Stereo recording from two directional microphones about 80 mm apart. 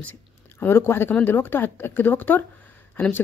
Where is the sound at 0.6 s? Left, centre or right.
Left.